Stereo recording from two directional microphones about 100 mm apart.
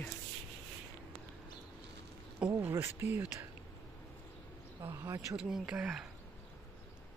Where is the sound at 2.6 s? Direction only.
25° right (ahead or behind).